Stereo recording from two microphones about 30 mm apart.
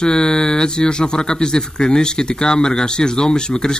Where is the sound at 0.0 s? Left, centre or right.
Left.